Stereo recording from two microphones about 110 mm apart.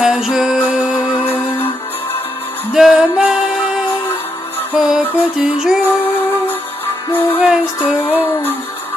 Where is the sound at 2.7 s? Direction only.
5° right (ahead or behind).